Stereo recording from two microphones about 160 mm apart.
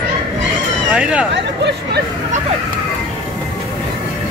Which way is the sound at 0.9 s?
5° right (ahead or behind).